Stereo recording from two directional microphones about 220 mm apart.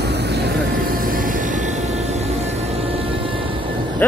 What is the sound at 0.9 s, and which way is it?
Music, 40° right (ahead or behind).